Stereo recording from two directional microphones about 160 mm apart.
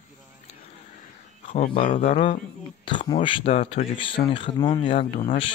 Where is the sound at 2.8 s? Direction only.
30° left (ahead or behind).